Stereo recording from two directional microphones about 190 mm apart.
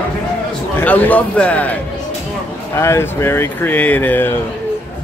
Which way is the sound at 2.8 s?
15° left (ahead or behind).